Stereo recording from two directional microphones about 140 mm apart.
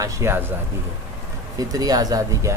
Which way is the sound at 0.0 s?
15° right (ahead or behind).